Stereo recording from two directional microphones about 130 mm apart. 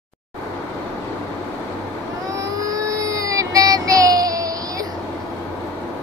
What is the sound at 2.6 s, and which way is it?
Child singing, 25° right (ahead or behind).